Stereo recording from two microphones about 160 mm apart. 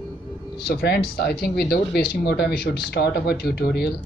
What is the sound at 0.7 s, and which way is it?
Speech, 80° left.